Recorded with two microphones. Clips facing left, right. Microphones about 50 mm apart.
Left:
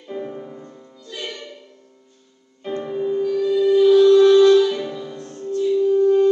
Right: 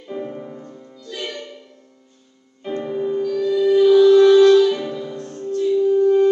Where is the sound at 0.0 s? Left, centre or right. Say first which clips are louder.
Right 1 dB; centre.